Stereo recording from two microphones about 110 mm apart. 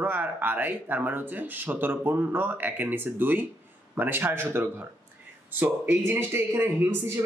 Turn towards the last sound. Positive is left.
turn(degrees=-20)  # may be behind; listen again after turning